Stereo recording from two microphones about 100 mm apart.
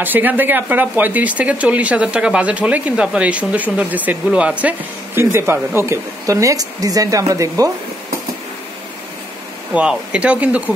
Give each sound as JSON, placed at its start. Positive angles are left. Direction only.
{"t": 0.0, "sound": "speech", "side_deg": -20}
{"t": 5.2, "sound": "speech", "side_deg": -25}
{"t": 9.8, "sound": "speech", "side_deg": -10}